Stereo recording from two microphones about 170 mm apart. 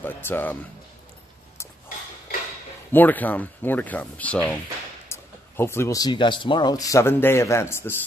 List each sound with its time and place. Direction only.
0.0 s speech: 10° left (ahead or behind)
2.9 s speech: 10° left (ahead or behind)